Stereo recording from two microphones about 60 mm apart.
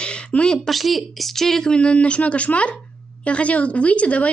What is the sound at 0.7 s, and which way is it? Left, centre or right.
A woman's voice, centre.